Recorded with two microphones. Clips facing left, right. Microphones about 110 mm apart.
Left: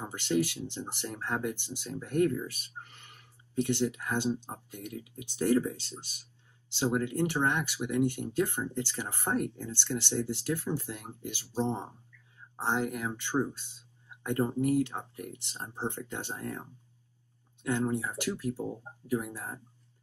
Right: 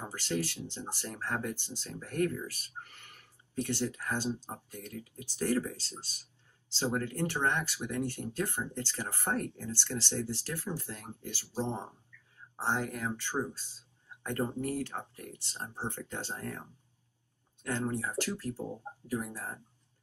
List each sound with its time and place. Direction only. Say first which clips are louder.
0.0 s speech: left 5 dB; 15° left (ahead or behind)
17.6 s speech: left 3 dB; 15° left (ahead or behind)